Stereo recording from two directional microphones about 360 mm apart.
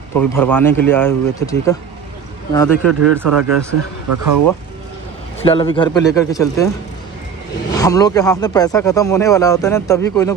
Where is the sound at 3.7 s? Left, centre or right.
Right.